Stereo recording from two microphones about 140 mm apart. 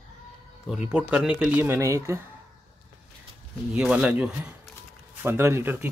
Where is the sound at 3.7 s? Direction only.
10° right (ahead or behind).